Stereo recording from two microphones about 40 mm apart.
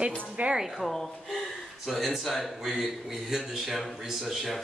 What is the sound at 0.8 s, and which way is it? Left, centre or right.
A woman's voice, centre.